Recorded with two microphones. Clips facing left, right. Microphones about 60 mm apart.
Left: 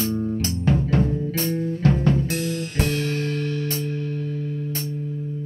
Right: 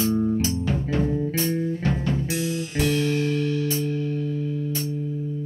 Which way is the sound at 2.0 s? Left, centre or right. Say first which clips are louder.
Left 3 dB; left.